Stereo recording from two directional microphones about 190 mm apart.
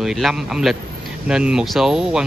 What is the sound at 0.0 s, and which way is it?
Speech, centre (ahead or behind).